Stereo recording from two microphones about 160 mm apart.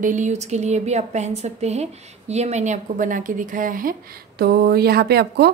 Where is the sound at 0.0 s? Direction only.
50° right (ahead or behind).